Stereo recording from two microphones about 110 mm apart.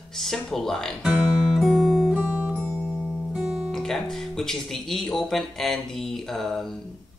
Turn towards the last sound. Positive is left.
turn(degrees=0)  # may be behind; listen again after turning